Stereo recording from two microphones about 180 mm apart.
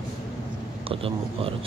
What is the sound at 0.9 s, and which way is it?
Speech, 30° right (ahead or behind).